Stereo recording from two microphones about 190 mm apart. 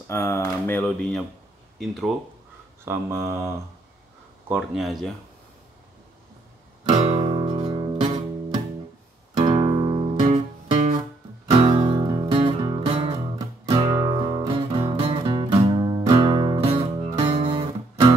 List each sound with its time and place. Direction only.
0.1 s speech: 15° left (ahead or behind)
2.8 s mantra: 15° right (ahead or behind)
4.5 s speech: 5° right (ahead or behind)
6.8 s music: 30° right (ahead or behind)
9.4 s music: 25° right (ahead or behind)
11.5 s music: 30° right (ahead or behind)